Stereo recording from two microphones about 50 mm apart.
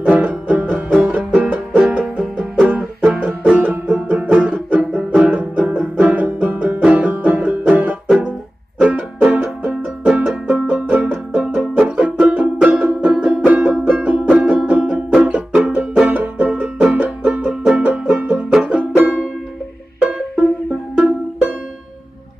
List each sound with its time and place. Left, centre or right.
0.1 s music: right
0.8 s music: centre
1.1 s music: right
3.8 s music: centre
5.6 s banjo: right
8.3 s music: right
11.3 s banjo: centre
11.9 s music: centre
17.5 s music: centre; by 19.2 s right
20.9 s music: right